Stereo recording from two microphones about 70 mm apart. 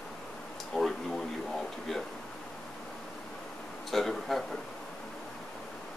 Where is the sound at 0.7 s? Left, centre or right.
Centre.